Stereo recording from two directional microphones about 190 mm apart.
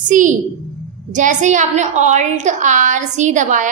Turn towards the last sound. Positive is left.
turn(degrees=-40)  # may be behind; listen again after turning